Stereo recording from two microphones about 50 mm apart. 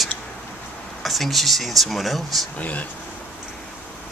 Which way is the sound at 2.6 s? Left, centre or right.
Left.